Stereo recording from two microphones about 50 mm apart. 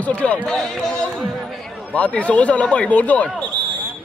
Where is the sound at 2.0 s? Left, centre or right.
Left.